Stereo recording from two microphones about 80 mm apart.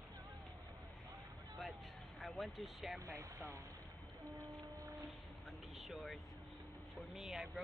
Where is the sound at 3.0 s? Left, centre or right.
Right.